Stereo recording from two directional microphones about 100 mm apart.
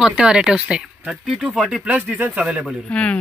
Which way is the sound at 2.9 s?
10° left (ahead or behind).